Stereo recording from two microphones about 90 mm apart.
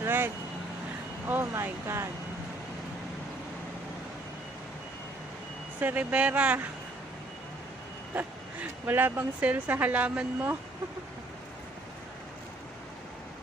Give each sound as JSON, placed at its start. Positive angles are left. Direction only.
{"t": 0.0, "sound": "vehicle", "side_deg": -25}
{"t": 1.2, "sound": "speech", "side_deg": -25}
{"t": 5.8, "sound": "speech", "side_deg": -20}
{"t": 8.1, "sound": "speech", "side_deg": -20}